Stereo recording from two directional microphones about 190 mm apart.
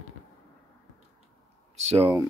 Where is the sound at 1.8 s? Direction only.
35° right (ahead or behind).